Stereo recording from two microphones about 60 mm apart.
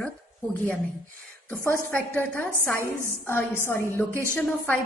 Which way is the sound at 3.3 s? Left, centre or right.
Left.